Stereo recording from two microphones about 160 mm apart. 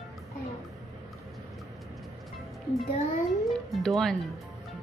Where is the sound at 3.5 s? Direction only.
Centre (ahead or behind).